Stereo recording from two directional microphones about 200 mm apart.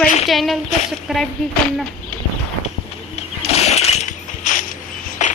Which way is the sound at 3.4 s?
30° left (ahead or behind).